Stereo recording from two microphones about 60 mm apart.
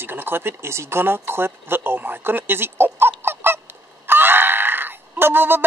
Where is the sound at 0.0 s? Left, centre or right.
Right.